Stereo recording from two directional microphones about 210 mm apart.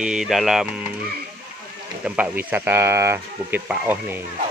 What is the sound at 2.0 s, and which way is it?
Speech, 5° right (ahead or behind).